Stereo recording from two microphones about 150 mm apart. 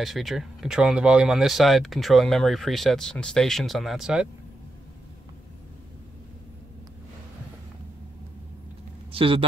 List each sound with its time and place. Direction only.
0.0 s speech: centre (ahead or behind)
9.1 s speech: 35° right (ahead or behind)